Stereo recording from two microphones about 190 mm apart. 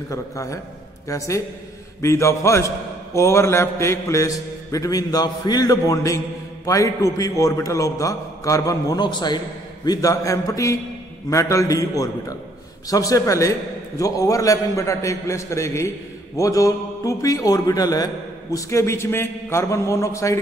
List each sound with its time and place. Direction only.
0.1 s a man's voice: 15° left (ahead or behind)